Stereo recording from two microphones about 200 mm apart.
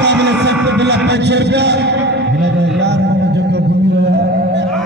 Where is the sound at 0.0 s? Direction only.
60° right (ahead or behind).